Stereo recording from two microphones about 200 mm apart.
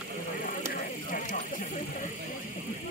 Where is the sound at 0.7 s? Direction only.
45° left (ahead or behind).